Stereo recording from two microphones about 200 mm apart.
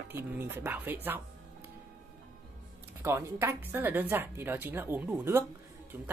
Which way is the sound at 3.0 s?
10° right (ahead or behind).